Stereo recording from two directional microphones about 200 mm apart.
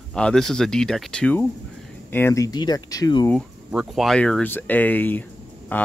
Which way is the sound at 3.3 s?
Centre (ahead or behind).